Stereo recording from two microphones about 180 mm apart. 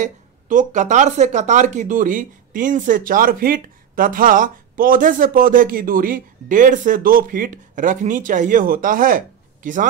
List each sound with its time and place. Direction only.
0.0 s speech: 45° right (ahead or behind)